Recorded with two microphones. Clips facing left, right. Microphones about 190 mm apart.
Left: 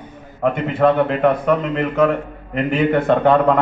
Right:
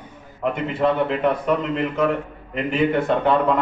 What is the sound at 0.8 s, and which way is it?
Speech, 60° left (ahead or behind).